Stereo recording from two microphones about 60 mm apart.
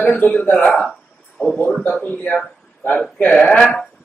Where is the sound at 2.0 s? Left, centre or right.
Left.